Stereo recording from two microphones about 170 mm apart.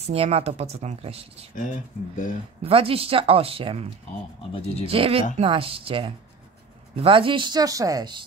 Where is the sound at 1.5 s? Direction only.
50° left (ahead or behind).